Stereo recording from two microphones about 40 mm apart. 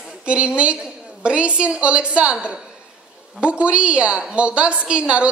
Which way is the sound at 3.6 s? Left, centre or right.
Right.